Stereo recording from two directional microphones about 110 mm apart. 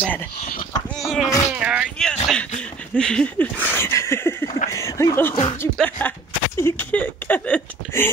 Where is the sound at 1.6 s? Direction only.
10° right (ahead or behind).